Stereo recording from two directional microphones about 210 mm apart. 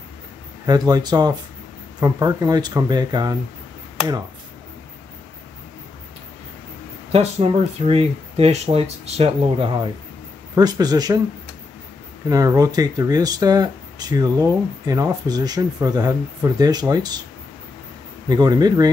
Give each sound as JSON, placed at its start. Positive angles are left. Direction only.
{"t": 0.7, "sound": "speech", "side_deg": -20}
{"t": 7.1, "sound": "speech", "side_deg": -30}
{"t": 12.3, "sound": "speech", "side_deg": -15}
{"t": 18.3, "sound": "speech", "side_deg": -20}